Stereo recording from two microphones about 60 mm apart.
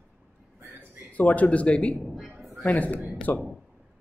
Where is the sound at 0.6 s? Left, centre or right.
Right.